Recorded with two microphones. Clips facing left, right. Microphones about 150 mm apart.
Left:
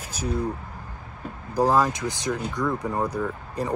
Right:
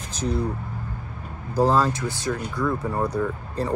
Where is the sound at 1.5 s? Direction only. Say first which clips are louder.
Right 1 dB; 15° left (ahead or behind).